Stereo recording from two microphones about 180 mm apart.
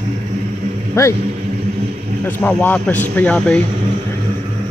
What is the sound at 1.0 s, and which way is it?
Speech, 15° left (ahead or behind).